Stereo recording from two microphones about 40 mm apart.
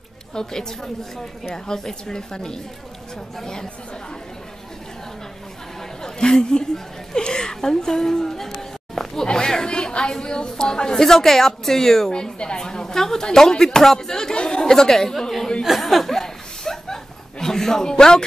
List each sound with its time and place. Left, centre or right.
0.3 s a woman's voice: centre
6.0 s a sound: centre
12.1 s a woman's voice: left
15.6 s chuckle: centre